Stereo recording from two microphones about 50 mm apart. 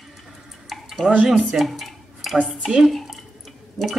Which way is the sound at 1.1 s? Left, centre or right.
Centre.